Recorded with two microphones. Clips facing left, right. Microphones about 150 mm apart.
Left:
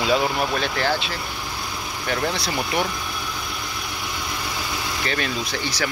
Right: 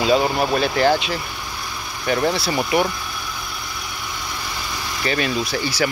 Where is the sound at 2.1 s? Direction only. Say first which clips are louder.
Right 5 dB; 10° right (ahead or behind).